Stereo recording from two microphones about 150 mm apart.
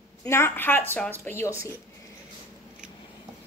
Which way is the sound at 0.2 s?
15° left (ahead or behind).